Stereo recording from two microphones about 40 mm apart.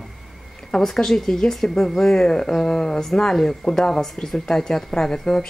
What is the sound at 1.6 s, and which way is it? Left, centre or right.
Speech, left.